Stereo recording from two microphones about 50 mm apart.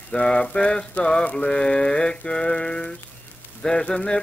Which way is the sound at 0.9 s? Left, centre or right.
Left.